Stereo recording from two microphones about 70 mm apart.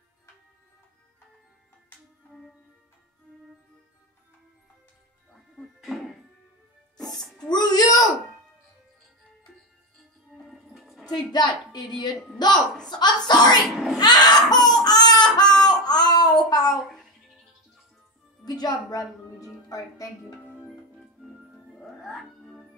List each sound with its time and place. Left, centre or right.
5.3 s music: centre
7.4 s a sound: left
10.5 s music: centre
11.1 s a woman's voice: left
13.9 s baby cry: left
18.4 s a woman's voice: left
21.2 s music: centre